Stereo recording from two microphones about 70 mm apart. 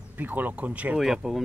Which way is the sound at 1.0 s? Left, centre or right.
Centre.